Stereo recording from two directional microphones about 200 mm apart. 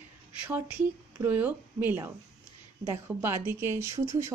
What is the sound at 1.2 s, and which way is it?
Speech, 10° right (ahead or behind).